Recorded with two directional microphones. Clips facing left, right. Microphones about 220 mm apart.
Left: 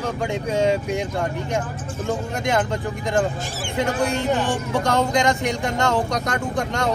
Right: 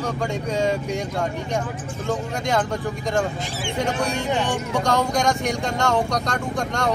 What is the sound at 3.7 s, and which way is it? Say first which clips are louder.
Speech: left 2 dB; centre (ahead or behind).